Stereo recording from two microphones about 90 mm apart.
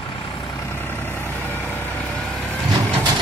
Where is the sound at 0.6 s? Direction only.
25° left (ahead or behind).